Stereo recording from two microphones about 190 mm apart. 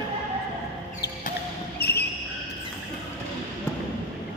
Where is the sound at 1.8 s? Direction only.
60° left (ahead or behind).